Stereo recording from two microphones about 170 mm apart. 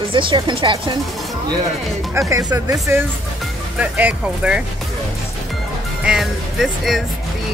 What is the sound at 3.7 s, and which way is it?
Speech, 10° right (ahead or behind).